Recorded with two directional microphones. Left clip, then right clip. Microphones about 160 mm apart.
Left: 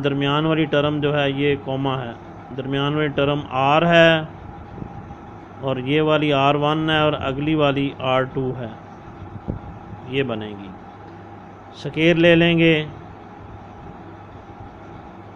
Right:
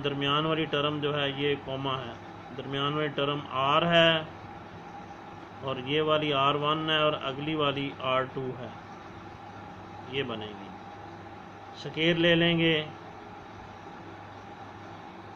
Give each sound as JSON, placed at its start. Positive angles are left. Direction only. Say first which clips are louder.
{"t": 0.0, "sound": "speech", "louder": "left 7 dB", "side_deg": 40}
{"t": 5.7, "sound": "speech", "louder": "left 8 dB", "side_deg": 40}
{"t": 10.1, "sound": "speech", "louder": "left 10 dB", "side_deg": 45}
{"t": 11.8, "sound": "speech", "louder": "left 9 dB", "side_deg": 45}